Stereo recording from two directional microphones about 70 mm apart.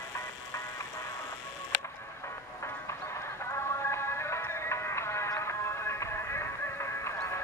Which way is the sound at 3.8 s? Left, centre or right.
Left.